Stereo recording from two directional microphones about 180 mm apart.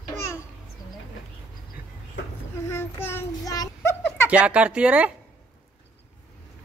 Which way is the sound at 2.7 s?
15° left (ahead or behind).